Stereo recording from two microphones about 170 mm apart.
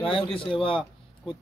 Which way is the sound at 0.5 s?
30° left (ahead or behind).